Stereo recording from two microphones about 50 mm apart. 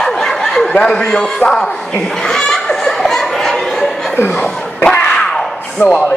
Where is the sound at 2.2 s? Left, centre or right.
Centre.